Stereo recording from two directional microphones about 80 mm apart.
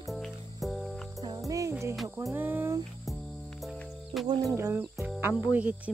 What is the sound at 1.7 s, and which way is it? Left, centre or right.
Music, right.